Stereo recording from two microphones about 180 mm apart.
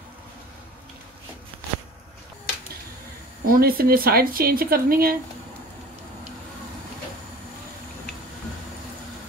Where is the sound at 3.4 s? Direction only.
55° right (ahead or behind).